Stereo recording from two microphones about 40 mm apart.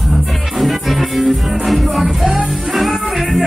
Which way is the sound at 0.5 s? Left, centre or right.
Centre.